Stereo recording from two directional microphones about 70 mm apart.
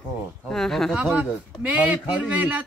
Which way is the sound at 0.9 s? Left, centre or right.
Centre.